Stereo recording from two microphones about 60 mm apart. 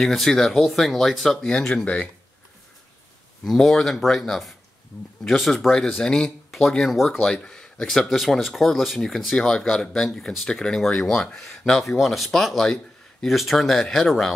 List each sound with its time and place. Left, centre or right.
0.0 s speech: centre
3.4 s speech: centre
7.3 s speech: centre